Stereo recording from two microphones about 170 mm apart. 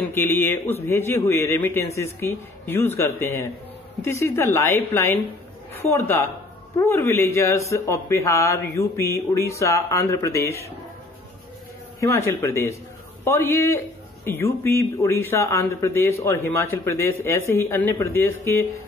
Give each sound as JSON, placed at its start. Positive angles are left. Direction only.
{"t": 0.1, "sound": "speech", "side_deg": 15}
{"t": 12.0, "sound": "speech", "side_deg": 15}